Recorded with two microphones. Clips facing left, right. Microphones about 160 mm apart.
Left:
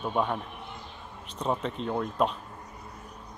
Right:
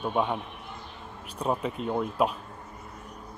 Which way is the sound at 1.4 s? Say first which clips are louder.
Right 1 dB; 5° right (ahead or behind).